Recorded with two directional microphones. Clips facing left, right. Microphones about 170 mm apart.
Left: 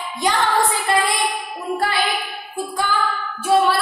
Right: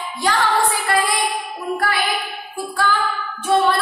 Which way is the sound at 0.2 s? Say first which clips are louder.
Even; 20° left (ahead or behind).